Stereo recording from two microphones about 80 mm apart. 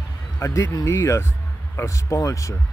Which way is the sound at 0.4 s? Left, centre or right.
Left.